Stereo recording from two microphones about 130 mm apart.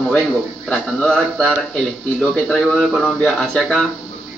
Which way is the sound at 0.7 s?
5° left (ahead or behind).